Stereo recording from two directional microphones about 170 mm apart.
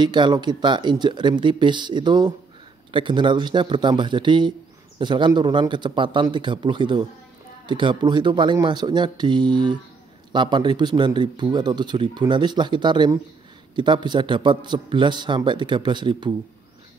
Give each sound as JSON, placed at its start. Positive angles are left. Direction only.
{"t": 0.0, "sound": "a man's voice", "side_deg": -25}